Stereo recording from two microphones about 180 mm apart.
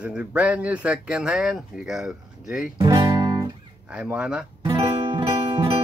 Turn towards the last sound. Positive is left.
turn(degrees=-30)  # may be behind; listen again after turning